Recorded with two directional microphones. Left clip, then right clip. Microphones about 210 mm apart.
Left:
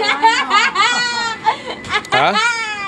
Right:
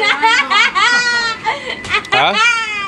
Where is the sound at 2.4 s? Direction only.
5° right (ahead or behind).